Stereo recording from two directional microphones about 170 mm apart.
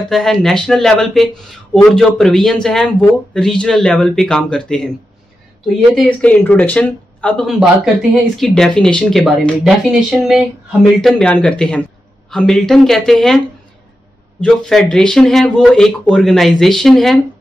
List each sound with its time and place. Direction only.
0.1 s speech: centre (ahead or behind)
6.0 s speech: 10° left (ahead or behind)
14.4 s speech: 5° left (ahead or behind)